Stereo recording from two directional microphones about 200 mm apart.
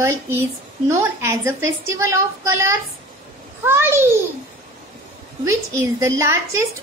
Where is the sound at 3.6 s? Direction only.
10° right (ahead or behind).